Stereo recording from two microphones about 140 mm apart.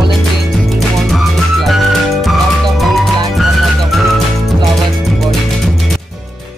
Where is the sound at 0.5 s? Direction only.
Centre (ahead or behind).